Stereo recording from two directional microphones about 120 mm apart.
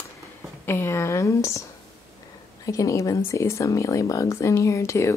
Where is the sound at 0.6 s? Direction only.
20° left (ahead or behind).